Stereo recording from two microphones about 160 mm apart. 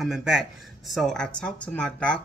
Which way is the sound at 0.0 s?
5° right (ahead or behind).